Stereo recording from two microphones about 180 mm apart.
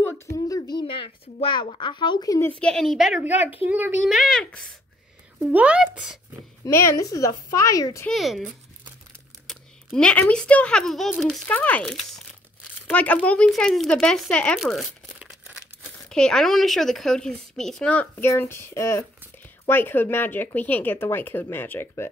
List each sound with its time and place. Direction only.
0.0 s a sound: 15° left (ahead or behind)
2.6 s speech: 5° left (ahead or behind)
6.6 s speech: 15° left (ahead or behind)
8.1 s speech: centre (ahead or behind)
9.5 s speech: 5° left (ahead or behind)